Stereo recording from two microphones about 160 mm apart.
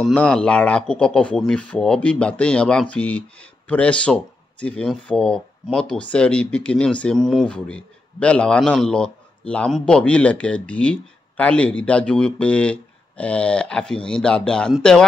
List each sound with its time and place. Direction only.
0.0 s speech: 5° left (ahead or behind)